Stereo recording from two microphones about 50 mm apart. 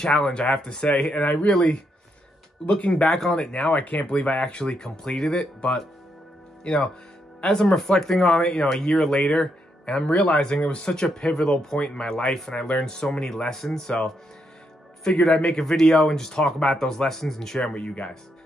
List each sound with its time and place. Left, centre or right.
0.0 s speech: centre
2.7 s speech: left
3.1 s speech: centre
3.7 s speech: left; by 5.5 s centre
6.6 s speech: centre
17.7 s speech: left